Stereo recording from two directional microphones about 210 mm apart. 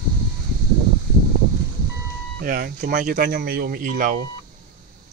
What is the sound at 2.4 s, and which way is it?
Speech, 45° right (ahead or behind).